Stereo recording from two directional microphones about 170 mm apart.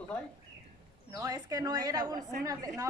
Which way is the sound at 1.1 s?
25° right (ahead or behind).